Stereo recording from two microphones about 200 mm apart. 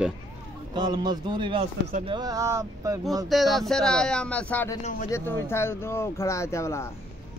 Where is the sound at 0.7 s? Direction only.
20° right (ahead or behind).